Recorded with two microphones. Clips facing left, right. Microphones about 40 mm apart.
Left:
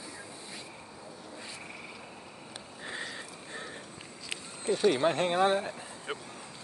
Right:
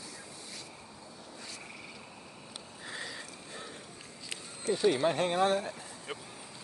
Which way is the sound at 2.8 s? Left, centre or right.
Left.